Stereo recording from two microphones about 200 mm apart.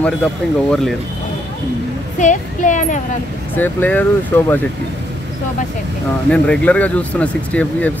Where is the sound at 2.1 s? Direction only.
40° left (ahead or behind).